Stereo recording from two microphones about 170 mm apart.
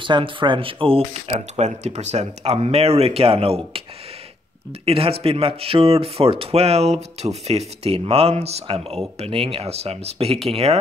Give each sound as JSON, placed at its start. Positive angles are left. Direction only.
{"t": 0.0, "sound": "speech", "side_deg": -30}
{"t": 4.8, "sound": "speech", "side_deg": -35}